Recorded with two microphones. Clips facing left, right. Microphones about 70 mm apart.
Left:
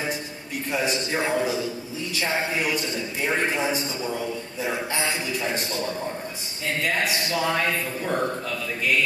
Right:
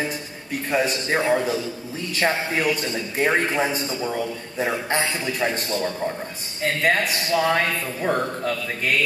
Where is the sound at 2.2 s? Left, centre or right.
Right.